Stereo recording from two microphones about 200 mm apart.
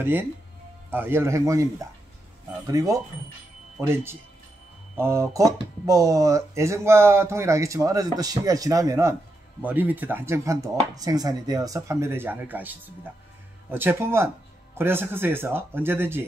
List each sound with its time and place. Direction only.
0.0 s speech: 10° right (ahead or behind)